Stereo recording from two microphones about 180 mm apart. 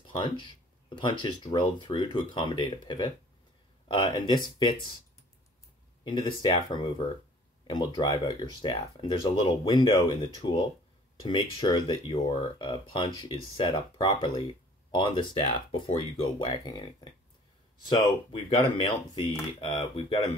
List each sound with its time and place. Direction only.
0.1 s speech: 25° left (ahead or behind)
6.0 s speech: 25° left (ahead or behind)
17.8 s speech: 25° left (ahead or behind)